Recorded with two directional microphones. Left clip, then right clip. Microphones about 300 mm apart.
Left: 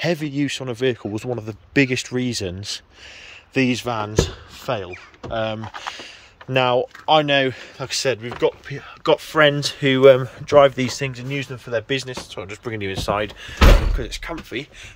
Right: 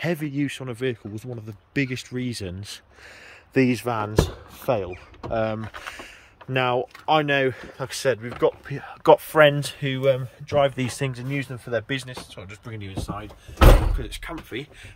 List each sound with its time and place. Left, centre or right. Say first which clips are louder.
0.0 s speech: left 4 dB; centre
13.9 s speech: left 5 dB; centre